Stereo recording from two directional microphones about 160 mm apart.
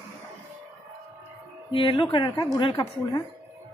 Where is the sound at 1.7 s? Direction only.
30° left (ahead or behind).